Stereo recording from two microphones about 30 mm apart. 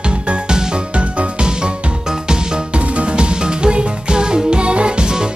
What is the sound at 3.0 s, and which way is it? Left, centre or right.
Music, right.